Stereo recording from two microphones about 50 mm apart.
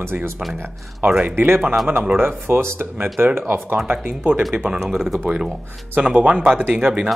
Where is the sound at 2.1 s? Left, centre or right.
Right.